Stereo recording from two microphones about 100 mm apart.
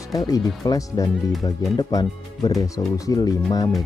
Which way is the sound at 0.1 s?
40° left (ahead or behind).